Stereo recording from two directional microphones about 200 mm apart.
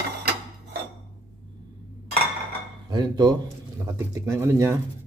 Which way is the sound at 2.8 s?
20° right (ahead or behind).